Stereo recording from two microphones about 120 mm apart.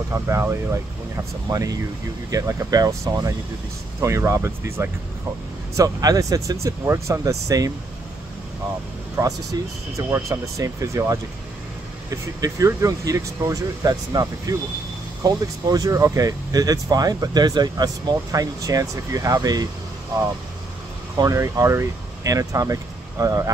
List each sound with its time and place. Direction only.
0.1 s speech: 25° right (ahead or behind)
9.1 s speech: 25° right (ahead or behind)
21.2 s speech: 30° right (ahead or behind)